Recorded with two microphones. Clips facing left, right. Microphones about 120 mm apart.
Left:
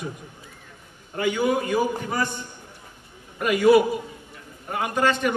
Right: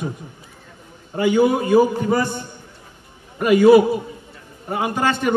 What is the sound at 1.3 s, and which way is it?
A man's voice, 25° right (ahead or behind).